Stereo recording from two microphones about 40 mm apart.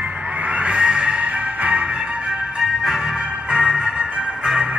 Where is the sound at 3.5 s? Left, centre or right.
Right.